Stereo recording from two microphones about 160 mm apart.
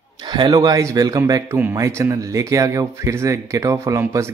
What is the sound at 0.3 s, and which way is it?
Speech, 25° right (ahead or behind).